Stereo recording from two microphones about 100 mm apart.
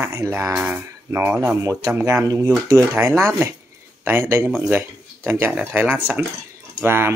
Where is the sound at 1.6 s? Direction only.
35° right (ahead or behind).